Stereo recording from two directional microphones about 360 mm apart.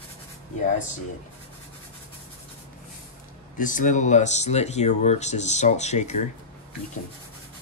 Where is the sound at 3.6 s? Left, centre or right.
Left.